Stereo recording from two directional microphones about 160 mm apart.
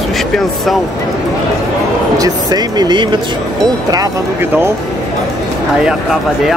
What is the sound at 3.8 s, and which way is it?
Speech, 20° right (ahead or behind).